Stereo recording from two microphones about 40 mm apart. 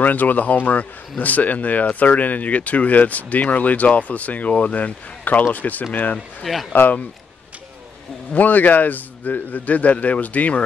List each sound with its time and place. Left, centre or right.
0.0 s a man's voice: left
6.1 s speech: centre
6.7 s a man's voice: left
8.3 s a man's voice: left